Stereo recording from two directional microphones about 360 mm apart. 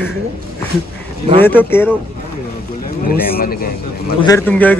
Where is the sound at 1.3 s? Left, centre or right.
Centre.